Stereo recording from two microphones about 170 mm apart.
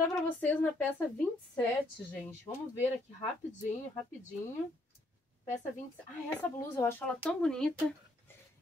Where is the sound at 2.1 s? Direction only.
10° left (ahead or behind).